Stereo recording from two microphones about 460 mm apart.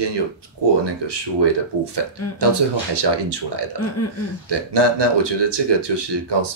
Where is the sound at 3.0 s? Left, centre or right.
Right.